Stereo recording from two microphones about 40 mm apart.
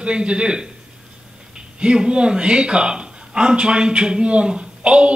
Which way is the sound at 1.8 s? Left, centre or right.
Right.